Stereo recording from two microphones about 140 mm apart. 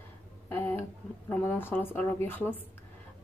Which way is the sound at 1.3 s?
15° left (ahead or behind).